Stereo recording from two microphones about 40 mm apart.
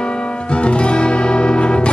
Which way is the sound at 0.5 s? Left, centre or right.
Left.